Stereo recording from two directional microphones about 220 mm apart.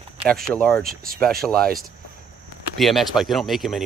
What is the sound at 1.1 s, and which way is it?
Speech, centre (ahead or behind).